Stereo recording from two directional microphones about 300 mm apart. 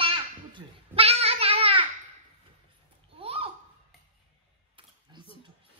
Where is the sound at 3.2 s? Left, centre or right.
Centre.